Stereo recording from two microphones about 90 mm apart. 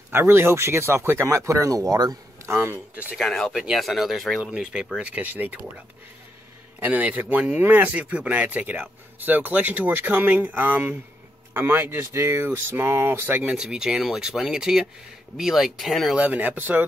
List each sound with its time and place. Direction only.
0.1 s speech: 25° right (ahead or behind); by 2.1 s 45° right (ahead or behind)
2.4 s speech: 30° right (ahead or behind)
3.2 s speech: 5° left (ahead or behind)
3.5 s speech: 5° right (ahead or behind)
4.4 s speech: 10° right (ahead or behind)
6.8 s speech: 15° right (ahead or behind)
13.5 s speech: 10° right (ahead or behind)
16.2 s speech: 20° right (ahead or behind)